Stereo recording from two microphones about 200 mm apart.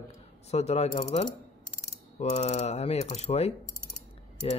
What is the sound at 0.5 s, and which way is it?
A man's voice, 30° left (ahead or behind).